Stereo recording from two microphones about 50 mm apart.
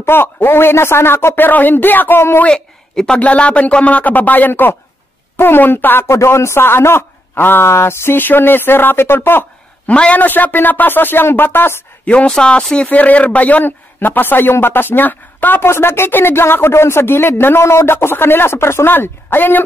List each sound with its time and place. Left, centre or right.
0.0 s speech: left
2.4 s a sound: centre
3.2 s speech: left
6.0 s a man's voice: left
7.6 s a man's voice: left
8.2 s speech: left
9.8 s speech: left
10.2 s speech: left
12.1 s speech: left
13.9 s speech: left
15.6 s speech: left
18.9 s speech: left